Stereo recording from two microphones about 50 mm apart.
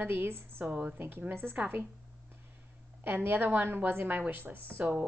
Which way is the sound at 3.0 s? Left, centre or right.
Right.